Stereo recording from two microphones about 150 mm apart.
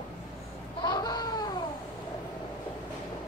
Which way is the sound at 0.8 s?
30° left (ahead or behind).